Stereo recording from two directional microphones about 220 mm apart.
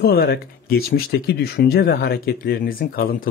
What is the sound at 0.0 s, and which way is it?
Speech, 45° left (ahead or behind).